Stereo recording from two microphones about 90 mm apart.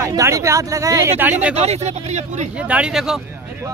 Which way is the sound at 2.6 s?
15° right (ahead or behind).